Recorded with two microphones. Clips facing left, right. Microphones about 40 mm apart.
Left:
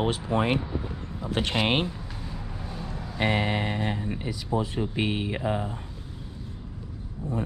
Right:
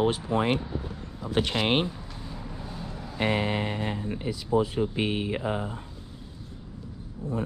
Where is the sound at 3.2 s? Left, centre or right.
Left.